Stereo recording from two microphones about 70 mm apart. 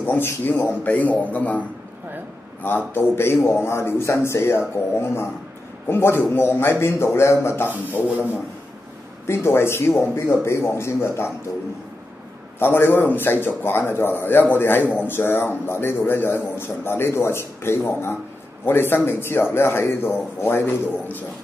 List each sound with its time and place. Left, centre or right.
0.0 s a man's voice: left
2.9 s a man's voice: left
9.3 s a man's voice: left
12.5 s a man's voice: left